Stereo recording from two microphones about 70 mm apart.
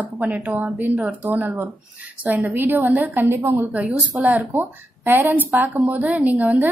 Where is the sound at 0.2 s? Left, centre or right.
Right.